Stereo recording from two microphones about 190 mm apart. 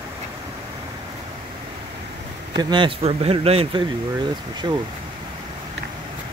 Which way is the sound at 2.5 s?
25° right (ahead or behind).